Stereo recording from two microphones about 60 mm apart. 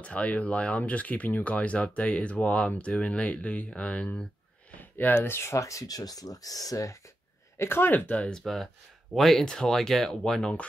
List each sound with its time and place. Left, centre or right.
0.0 s speech: left
7.5 s speech: left
8.3 s speech: centre